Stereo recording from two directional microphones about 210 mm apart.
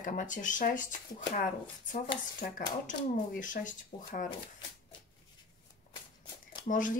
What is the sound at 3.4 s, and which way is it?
Speech, 40° left (ahead or behind).